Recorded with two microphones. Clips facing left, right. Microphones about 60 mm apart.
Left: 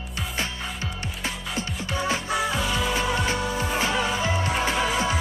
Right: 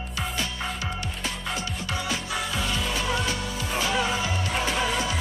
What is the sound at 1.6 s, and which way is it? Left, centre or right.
Music, left.